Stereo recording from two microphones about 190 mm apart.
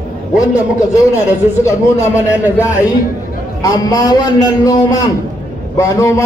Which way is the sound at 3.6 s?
20° left (ahead or behind).